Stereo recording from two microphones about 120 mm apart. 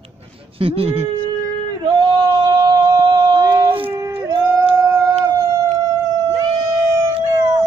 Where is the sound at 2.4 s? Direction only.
35° right (ahead or behind).